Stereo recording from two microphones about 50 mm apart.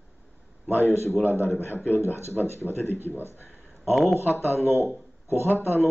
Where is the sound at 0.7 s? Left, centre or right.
Left.